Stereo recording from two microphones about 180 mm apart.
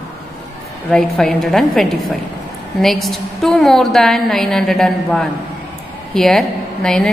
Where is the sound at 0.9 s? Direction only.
5° left (ahead or behind).